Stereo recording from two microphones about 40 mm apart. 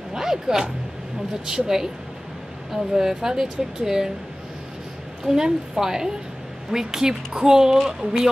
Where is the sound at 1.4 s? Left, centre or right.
Centre.